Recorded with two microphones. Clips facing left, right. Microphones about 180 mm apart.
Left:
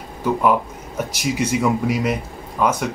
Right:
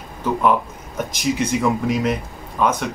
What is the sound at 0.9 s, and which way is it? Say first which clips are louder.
Speech: right 1 dB; 5° left (ahead or behind).